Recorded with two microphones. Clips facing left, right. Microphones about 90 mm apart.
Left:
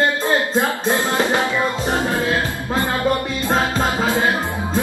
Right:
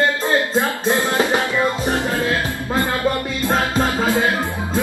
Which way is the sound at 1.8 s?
20° left (ahead or behind).